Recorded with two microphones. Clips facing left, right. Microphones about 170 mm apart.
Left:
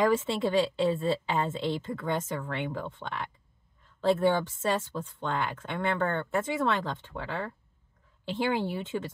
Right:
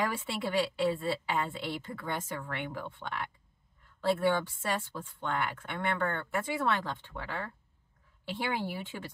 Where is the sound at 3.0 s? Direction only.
5° left (ahead or behind).